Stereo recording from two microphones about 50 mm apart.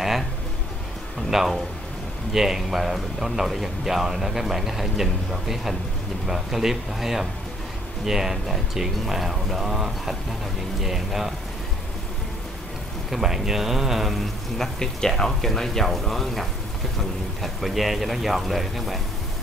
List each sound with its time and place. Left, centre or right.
1.3 s a man's voice: centre
13.1 s speech: centre
14.8 s a man's voice: centre